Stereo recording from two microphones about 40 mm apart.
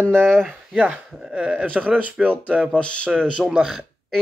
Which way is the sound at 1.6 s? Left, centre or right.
Right.